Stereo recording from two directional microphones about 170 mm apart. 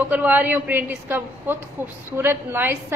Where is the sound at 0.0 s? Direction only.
10° right (ahead or behind).